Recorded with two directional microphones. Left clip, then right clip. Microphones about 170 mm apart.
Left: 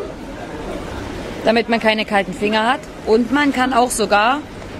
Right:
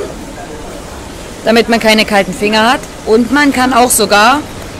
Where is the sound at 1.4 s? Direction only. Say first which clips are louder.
Right 6 dB; 50° right (ahead or behind).